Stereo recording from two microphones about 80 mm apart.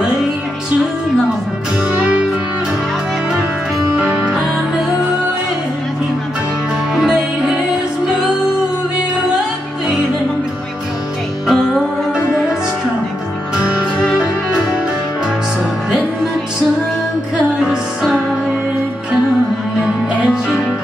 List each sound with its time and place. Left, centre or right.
1.9 s music: centre
3.9 s music: centre
7.0 s music: centre
11.4 s music: centre
13.6 s music: centre